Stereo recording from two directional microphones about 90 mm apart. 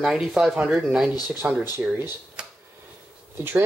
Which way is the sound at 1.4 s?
15° right (ahead or behind).